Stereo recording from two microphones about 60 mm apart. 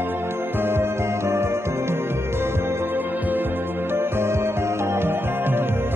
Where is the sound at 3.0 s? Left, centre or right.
Right.